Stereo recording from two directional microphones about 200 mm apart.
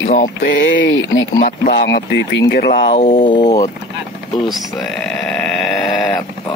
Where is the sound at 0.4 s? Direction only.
70° left (ahead or behind).